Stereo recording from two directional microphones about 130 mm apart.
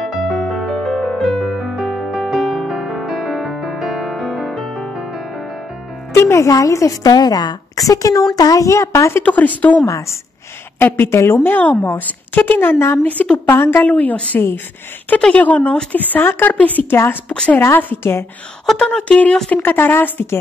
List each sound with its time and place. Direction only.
0.0 s music: centre (ahead or behind)
6.1 s a woman's voice: 20° left (ahead or behind)
9.8 s a woman's voice: 25° left (ahead or behind)
18.7 s a woman's voice: 5° left (ahead or behind)